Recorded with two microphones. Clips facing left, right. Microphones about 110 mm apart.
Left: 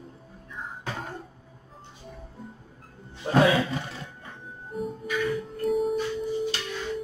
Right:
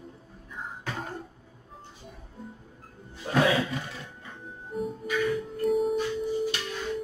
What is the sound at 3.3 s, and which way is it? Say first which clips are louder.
Roaring cats: left 3 dB; 25° left (ahead or behind).